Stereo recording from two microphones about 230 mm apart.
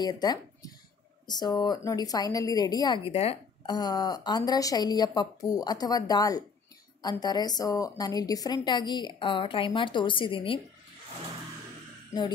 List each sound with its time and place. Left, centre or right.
0.0 s a woman's voice: centre